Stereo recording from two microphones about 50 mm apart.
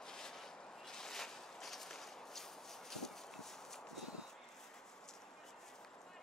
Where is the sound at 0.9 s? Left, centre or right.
Centre.